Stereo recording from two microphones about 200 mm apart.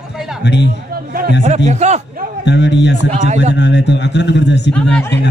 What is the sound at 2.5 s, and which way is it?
Speech, 60° left (ahead or behind).